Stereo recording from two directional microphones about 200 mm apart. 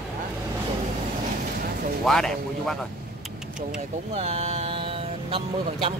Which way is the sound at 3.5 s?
35° right (ahead or behind).